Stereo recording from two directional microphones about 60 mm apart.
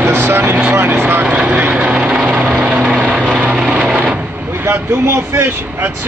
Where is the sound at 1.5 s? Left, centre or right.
Right.